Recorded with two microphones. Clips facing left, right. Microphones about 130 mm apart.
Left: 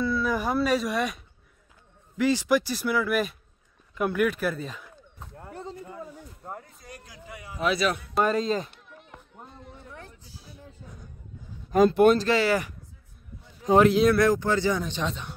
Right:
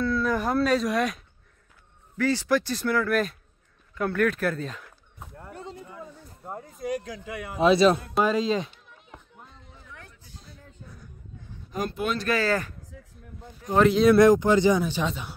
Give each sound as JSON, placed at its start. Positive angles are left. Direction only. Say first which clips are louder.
{"t": 0.0, "sound": "speech", "louder": "right 1 dB", "side_deg": 5}
{"t": 2.1, "sound": "speech", "louder": "left 1 dB", "side_deg": 15}
{"t": 6.4, "sound": "a sound", "louder": "right 2 dB", "side_deg": -5}
{"t": 6.8, "sound": "a man's voice", "louder": "right 15 dB", "side_deg": -85}
{"t": 7.6, "sound": "a man's voice", "louder": "right 7 dB", "side_deg": -25}
{"t": 8.1, "sound": "children playing", "louder": "right 1 dB", "side_deg": 0}
{"t": 9.4, "sound": "music", "louder": "left 4 dB", "side_deg": 40}
{"t": 9.8, "sound": "a sound", "louder": "left 1 dB", "side_deg": 30}
{"t": 11.7, "sound": "speech", "louder": "left 11 dB", "side_deg": 55}
{"t": 12.2, "sound": "speech", "louder": "left 2 dB", "side_deg": 25}
{"t": 12.4, "sound": "speech", "louder": "left 1 dB", "side_deg": 10}
{"t": 13.7, "sound": "speech", "louder": "even", "side_deg": 5}
{"t": 14.1, "sound": "speech", "louder": "right 5 dB", "side_deg": -20}